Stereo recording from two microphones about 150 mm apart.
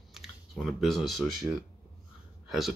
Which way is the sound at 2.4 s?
Centre (ahead or behind).